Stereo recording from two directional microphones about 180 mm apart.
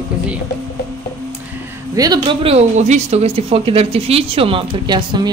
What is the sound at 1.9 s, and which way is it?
A woman's voice, 20° right (ahead or behind).